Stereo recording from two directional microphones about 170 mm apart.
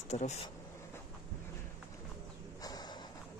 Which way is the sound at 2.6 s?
20° left (ahead or behind).